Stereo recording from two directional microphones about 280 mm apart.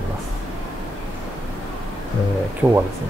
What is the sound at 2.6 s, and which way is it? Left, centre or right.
Speech, centre.